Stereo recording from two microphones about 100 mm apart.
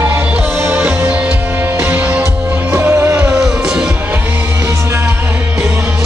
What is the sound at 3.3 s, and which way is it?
Music, 5° right (ahead or behind).